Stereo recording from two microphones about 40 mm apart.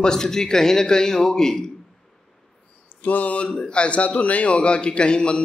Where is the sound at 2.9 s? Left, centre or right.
Left.